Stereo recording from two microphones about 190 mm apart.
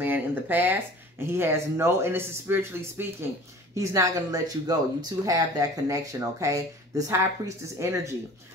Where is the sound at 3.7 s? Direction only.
15° right (ahead or behind).